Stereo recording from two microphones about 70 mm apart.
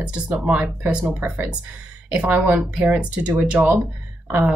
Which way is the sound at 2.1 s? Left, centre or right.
Centre.